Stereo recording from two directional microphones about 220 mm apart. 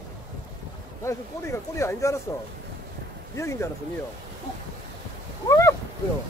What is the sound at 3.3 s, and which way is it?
Speech, 10° left (ahead or behind).